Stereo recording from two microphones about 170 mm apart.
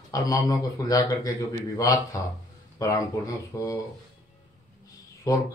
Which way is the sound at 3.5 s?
15° left (ahead or behind).